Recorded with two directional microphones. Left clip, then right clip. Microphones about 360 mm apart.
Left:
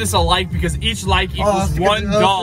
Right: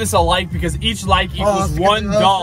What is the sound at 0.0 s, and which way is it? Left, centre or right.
Speech, centre.